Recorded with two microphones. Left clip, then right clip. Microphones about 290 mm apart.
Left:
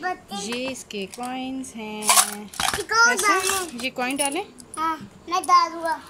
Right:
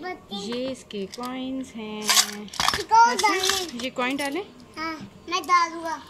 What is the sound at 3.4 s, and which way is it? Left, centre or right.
Speech, centre.